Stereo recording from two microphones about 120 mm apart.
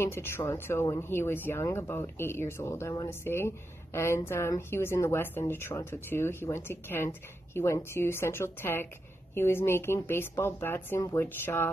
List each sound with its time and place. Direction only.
0.0 s speech: 20° left (ahead or behind)